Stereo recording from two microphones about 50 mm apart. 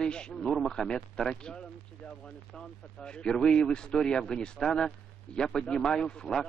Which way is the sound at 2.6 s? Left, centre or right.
Centre.